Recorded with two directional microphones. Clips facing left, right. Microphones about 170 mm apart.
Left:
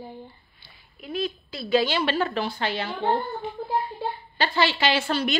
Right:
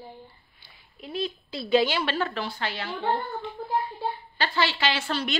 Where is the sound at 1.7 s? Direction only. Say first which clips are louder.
Even; 15° right (ahead or behind).